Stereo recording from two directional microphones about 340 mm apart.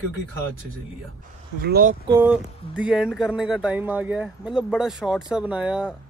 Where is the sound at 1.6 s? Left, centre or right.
Right.